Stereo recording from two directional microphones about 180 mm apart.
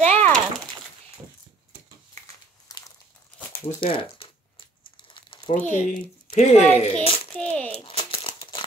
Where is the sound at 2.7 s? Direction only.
20° left (ahead or behind).